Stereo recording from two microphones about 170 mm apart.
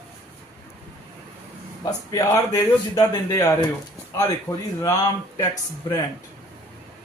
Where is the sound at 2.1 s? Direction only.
20° left (ahead or behind).